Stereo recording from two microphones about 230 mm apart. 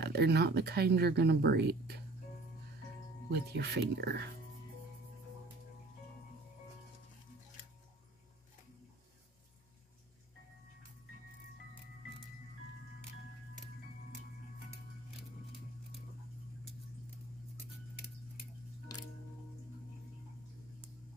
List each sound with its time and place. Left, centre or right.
0.0 s speech: right
3.3 s speech: right